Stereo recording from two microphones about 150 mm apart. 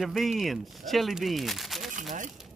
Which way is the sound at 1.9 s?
60° right (ahead or behind).